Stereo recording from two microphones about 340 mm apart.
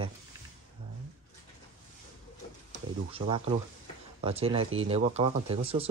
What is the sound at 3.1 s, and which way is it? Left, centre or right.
Speech, centre.